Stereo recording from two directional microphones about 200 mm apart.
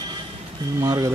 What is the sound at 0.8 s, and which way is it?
Speech, 20° right (ahead or behind).